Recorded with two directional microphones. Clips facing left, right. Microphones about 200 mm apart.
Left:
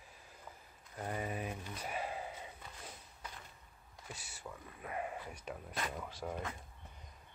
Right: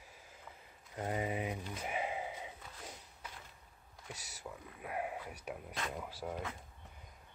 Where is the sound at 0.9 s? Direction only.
20° right (ahead or behind).